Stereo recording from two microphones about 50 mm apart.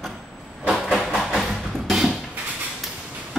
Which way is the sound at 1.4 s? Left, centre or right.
Centre.